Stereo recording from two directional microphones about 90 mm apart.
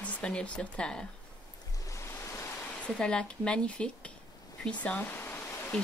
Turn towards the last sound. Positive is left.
turn(degrees=25)  # may be behind; listen again after turning